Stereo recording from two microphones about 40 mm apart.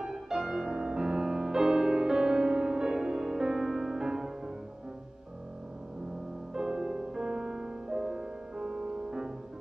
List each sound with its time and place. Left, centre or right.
0.0 s music: centre
6.5 s music: centre